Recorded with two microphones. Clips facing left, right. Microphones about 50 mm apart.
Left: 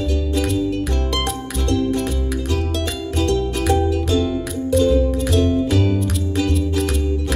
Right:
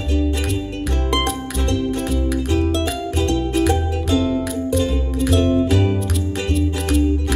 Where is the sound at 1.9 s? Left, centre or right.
Centre.